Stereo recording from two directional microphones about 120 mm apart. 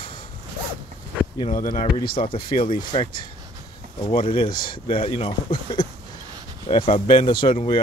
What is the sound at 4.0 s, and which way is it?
Speech, 45° left (ahead or behind).